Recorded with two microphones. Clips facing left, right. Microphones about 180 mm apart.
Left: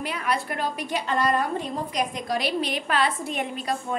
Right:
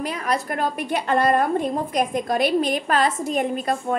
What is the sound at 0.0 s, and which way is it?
A woman's voice, 40° right (ahead or behind).